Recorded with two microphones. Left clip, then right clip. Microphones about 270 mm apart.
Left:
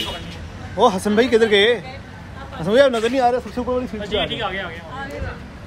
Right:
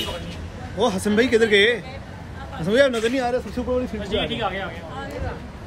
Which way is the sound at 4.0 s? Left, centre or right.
Right.